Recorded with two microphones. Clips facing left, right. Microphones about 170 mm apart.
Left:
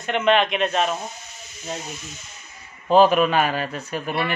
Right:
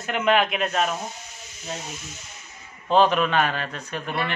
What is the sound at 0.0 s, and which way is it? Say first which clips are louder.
Speech: left 2 dB; 5° right (ahead or behind).